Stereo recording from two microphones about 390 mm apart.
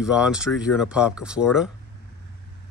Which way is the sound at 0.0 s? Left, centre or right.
Centre.